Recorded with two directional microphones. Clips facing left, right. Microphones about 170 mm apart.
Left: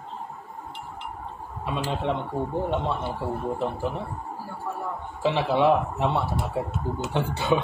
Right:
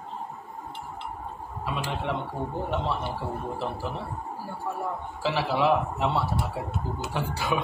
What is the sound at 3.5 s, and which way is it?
Speech, 20° left (ahead or behind).